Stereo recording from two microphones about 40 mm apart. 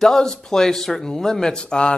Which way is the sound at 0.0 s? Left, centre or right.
Centre.